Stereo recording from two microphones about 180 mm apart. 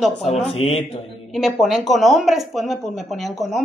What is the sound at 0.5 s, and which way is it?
Speech, 35° left (ahead or behind).